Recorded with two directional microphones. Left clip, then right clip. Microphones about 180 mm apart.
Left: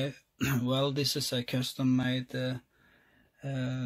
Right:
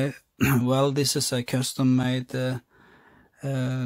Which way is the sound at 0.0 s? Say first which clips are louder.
Right 8 dB; 45° right (ahead or behind).